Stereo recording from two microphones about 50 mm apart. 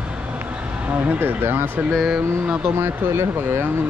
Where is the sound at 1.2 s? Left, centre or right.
Right.